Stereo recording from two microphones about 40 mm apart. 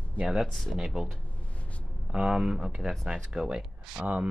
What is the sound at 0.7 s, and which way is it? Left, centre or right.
Speech, centre.